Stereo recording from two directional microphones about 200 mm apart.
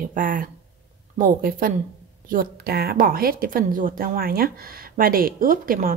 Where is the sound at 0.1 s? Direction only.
40° right (ahead or behind).